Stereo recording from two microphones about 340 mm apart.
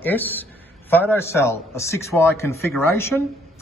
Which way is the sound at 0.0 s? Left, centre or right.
Centre.